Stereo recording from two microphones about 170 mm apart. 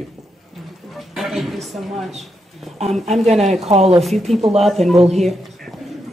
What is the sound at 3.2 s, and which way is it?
Speech, 40° right (ahead or behind).